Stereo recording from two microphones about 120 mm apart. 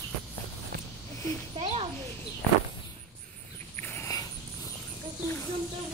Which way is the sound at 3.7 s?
15° left (ahead or behind).